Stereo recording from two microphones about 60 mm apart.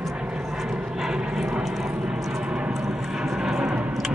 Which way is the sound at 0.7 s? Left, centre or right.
Centre.